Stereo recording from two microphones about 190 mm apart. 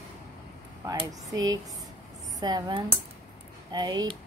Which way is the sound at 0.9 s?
20° right (ahead or behind).